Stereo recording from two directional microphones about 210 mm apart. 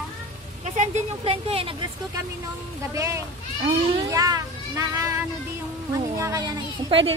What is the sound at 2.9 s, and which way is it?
Speech, 15° right (ahead or behind).